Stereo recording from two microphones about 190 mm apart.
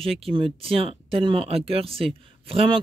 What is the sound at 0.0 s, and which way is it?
Speech, 30° right (ahead or behind).